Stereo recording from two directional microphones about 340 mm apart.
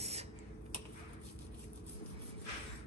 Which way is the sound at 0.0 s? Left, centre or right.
Centre.